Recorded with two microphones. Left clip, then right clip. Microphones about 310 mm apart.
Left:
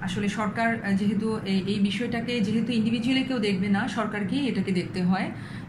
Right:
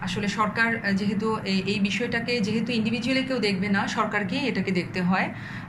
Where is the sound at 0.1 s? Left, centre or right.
Centre.